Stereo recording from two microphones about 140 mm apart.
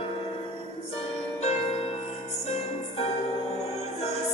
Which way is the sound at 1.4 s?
50° left (ahead or behind).